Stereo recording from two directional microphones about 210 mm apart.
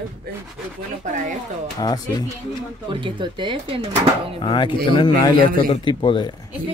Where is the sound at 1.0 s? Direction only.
35° right (ahead or behind).